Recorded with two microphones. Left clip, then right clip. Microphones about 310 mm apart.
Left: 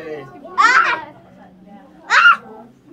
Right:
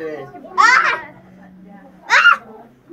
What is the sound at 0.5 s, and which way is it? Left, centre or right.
Children playing, right.